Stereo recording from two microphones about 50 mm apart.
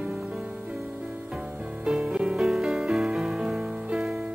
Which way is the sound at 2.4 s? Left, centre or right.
Centre.